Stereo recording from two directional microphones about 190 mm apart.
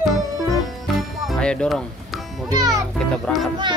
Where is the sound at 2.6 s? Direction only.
20° right (ahead or behind).